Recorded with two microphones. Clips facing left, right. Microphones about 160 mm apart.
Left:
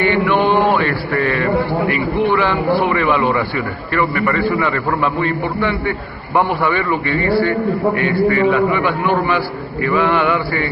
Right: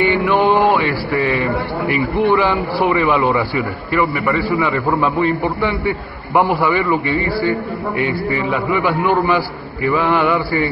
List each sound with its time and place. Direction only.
0.7 s a sound: 5° right (ahead or behind)
2.1 s a man's voice: 20° right (ahead or behind)
6.3 s a man's voice: 10° right (ahead or behind)
6.8 s a man's voice: 20° right (ahead or behind)
9.8 s a man's voice: 10° right (ahead or behind)